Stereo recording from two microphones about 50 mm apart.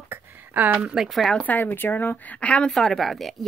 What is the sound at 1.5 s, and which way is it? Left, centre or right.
Speech, left.